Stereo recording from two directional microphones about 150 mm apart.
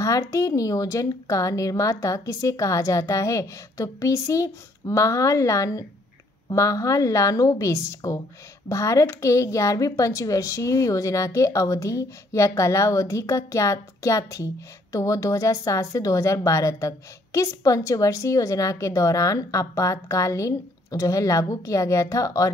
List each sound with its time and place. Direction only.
0.0 s a woman's voice: 20° left (ahead or behind)